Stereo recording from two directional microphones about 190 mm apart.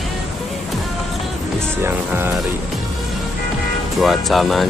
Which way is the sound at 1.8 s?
10° right (ahead or behind).